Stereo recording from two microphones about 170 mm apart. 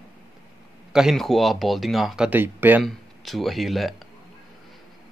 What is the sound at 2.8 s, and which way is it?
Speech, centre (ahead or behind).